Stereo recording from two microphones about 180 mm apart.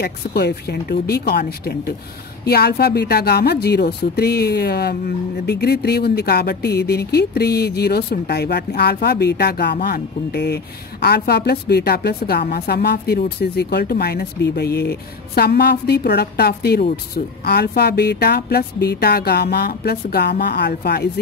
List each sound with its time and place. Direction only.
0.0 s a woman's voice: 65° left (ahead or behind)